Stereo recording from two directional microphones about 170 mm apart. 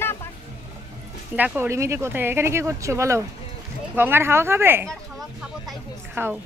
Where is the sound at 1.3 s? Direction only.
10° right (ahead or behind).